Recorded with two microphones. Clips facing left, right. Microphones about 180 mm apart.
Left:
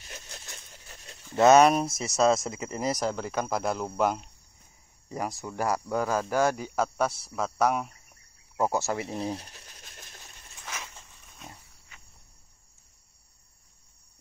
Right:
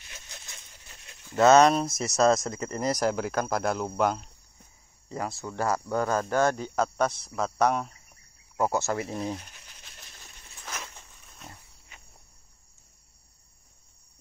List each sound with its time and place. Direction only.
1.3 s speech: 15° left (ahead or behind)
5.1 s speech: 15° left (ahead or behind)
9.0 s speech: 30° left (ahead or behind)
10.7 s pig: 10° left (ahead or behind)